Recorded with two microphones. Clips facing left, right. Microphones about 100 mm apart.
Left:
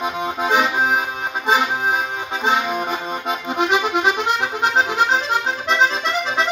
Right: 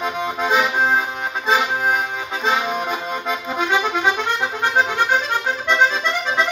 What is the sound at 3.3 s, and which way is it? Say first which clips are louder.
Accordion: left 2 dB; 15° left (ahead or behind).